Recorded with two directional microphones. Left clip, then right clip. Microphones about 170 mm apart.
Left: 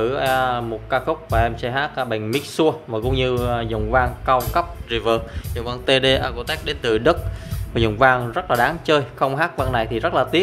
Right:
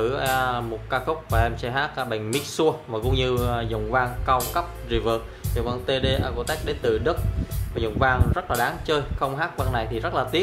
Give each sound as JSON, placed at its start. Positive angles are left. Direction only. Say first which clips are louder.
{"t": 0.0, "sound": "speech", "louder": "left 4 dB", "side_deg": 25}
{"t": 8.1, "sound": "speech", "louder": "left 5 dB", "side_deg": 35}